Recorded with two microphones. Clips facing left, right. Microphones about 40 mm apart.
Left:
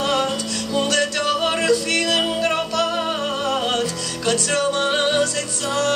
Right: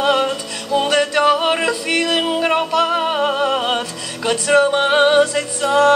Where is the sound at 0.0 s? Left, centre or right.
Right.